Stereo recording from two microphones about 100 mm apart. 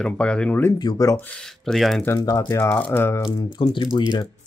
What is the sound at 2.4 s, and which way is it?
Speech, 30° left (ahead or behind).